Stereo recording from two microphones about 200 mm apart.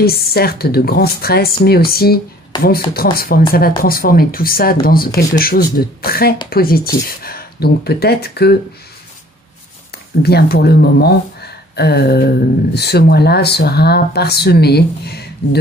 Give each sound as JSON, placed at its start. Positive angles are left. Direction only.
{"t": 0.0, "sound": "speech", "side_deg": 50}
{"t": 2.5, "sound": "speech", "side_deg": 20}
{"t": 2.9, "sound": "speech", "side_deg": 50}
{"t": 10.2, "sound": "a woman's voice", "side_deg": 50}